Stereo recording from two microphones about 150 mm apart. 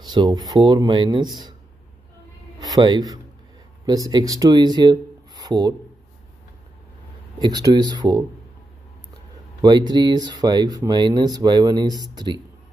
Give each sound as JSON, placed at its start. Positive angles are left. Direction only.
{"t": 0.0, "sound": "speech", "side_deg": -30}
{"t": 2.6, "sound": "speech", "side_deg": -30}
{"t": 7.3, "sound": "speech", "side_deg": -25}
{"t": 9.6, "sound": "speech", "side_deg": -30}